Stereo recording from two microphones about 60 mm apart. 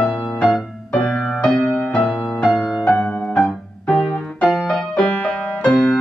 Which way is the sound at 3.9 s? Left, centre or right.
Centre.